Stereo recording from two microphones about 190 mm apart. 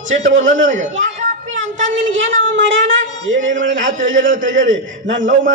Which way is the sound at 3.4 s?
40° right (ahead or behind).